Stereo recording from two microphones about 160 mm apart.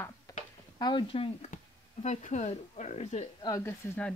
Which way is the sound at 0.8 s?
30° left (ahead or behind).